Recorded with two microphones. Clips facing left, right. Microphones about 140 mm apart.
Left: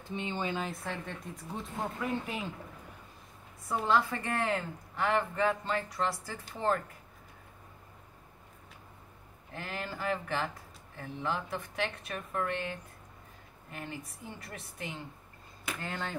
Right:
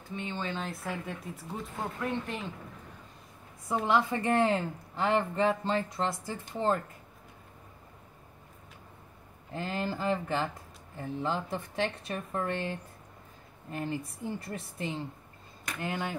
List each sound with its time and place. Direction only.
0.1 s speech: 20° left (ahead or behind)
0.7 s speech: 5° right (ahead or behind)
3.8 s speech: 20° right (ahead or behind)
9.5 s a woman's voice: 30° right (ahead or behind)
15.8 s speech: 15° right (ahead or behind)